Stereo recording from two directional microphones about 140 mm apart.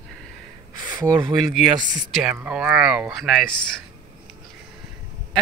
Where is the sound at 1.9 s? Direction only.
Centre (ahead or behind).